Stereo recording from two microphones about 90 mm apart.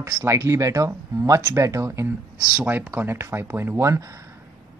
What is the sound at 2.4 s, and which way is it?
Speech, 20° right (ahead or behind).